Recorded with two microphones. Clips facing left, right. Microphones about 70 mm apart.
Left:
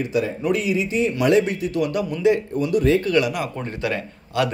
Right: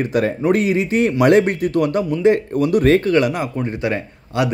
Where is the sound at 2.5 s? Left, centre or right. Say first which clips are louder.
Right 4 dB; right.